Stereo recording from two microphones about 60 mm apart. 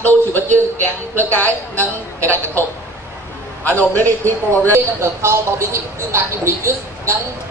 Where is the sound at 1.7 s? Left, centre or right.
Right.